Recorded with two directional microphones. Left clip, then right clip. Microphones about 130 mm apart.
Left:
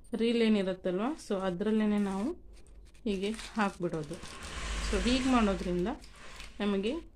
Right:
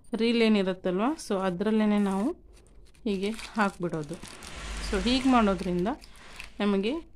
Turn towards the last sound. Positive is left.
turn(degrees=-45)  # may be behind; listen again after turning